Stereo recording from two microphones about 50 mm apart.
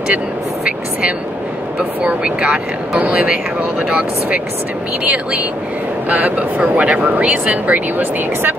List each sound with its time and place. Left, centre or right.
1.8 s speech: right
5.0 s speech: right